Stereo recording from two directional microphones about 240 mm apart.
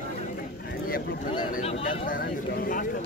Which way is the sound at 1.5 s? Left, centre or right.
Left.